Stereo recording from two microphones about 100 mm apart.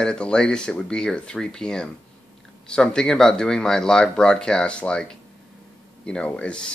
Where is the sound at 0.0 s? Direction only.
10° left (ahead or behind).